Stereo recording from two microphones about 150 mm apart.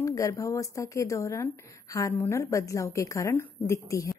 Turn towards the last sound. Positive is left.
turn(degrees=20)  # may be behind; listen again after turning